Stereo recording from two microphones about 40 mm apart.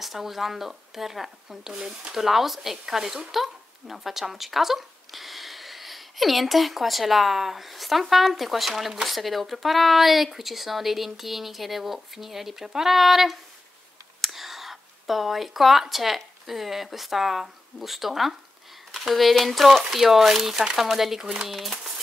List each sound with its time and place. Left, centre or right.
0.0 s speech: centre
2.1 s speech: centre
21.3 s speech: centre